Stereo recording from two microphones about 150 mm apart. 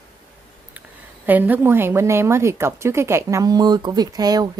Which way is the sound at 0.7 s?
10° right (ahead or behind).